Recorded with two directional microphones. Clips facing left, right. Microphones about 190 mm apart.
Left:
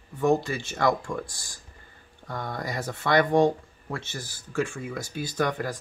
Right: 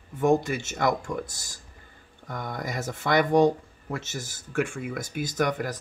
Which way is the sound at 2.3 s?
15° right (ahead or behind).